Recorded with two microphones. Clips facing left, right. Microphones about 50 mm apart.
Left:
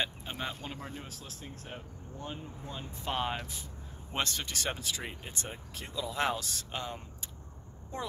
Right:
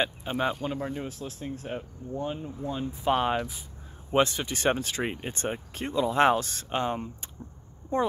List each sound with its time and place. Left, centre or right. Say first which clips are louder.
0.2 s speech: right 10 dB; centre
4.6 s speech: right 11 dB; right
7.9 s speech: right 12 dB; right